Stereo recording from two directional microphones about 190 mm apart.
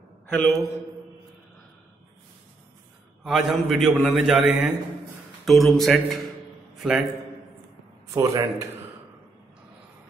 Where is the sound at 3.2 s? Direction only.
Centre (ahead or behind).